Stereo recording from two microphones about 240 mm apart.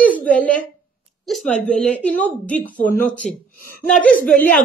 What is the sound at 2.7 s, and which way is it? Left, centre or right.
Speech, left.